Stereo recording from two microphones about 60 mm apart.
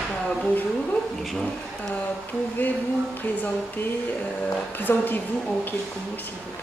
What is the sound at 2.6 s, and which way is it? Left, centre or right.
Speech, left.